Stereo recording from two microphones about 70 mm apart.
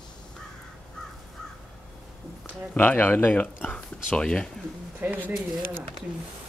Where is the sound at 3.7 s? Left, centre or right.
Centre.